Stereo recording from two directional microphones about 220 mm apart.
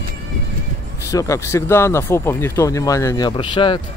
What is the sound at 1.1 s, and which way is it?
Speech, 15° left (ahead or behind).